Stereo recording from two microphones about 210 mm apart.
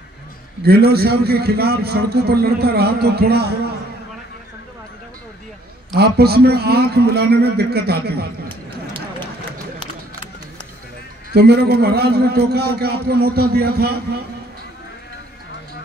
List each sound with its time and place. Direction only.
0.7 s a man's voice: 50° right (ahead or behind)
5.9 s a man's voice: 50° right (ahead or behind)
11.3 s a man's voice: 50° right (ahead or behind)